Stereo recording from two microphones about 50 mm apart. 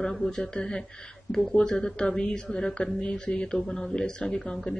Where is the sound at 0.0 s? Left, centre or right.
Centre.